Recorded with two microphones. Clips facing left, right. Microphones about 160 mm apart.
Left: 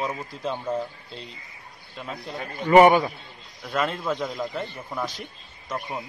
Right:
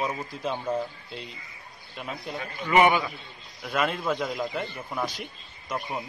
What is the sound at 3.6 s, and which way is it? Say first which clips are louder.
A man's voice: even; 5° right (ahead or behind).